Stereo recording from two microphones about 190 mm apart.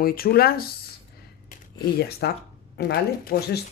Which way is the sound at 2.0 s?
55° left (ahead or behind).